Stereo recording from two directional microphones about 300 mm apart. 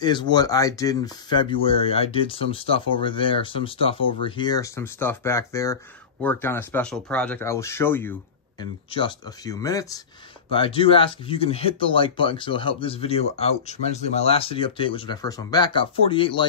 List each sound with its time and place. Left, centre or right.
0.0 s speech: centre